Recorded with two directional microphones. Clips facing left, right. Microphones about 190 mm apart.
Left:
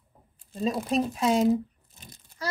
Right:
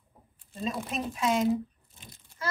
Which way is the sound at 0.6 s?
35° left (ahead or behind).